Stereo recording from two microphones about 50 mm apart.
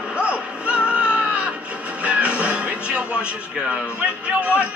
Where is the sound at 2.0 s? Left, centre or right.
Right.